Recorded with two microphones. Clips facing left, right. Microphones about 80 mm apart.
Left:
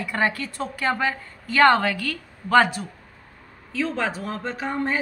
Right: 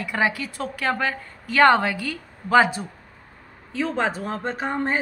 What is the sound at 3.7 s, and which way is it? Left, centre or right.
Speech, right.